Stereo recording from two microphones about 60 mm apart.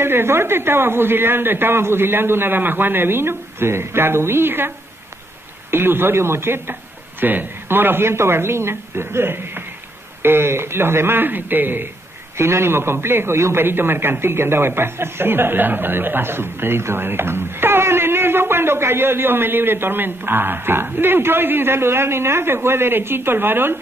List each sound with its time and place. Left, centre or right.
0.0 s a man's voice: right
12.4 s a man's voice: right